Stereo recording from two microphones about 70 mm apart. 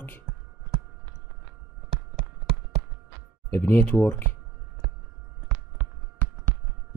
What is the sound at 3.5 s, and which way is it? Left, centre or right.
Speech, left.